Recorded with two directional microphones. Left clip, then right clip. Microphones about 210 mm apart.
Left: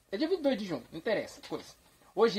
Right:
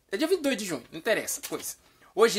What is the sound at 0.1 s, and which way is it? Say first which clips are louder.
Speech: right 4 dB; centre (ahead or behind).